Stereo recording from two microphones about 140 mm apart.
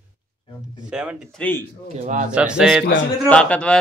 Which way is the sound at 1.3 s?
10° left (ahead or behind).